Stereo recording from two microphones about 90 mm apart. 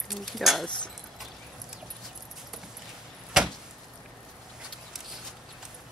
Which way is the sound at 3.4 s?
5° right (ahead or behind).